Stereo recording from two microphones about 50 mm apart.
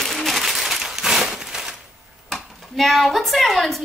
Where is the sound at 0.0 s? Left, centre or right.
Centre.